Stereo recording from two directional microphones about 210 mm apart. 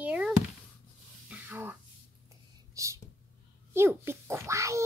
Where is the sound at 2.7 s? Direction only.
15° right (ahead or behind).